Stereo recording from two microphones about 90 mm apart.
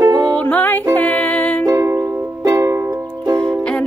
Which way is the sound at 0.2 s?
15° left (ahead or behind).